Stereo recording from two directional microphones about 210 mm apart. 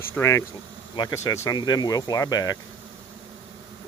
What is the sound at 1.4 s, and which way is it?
Speech, 20° left (ahead or behind).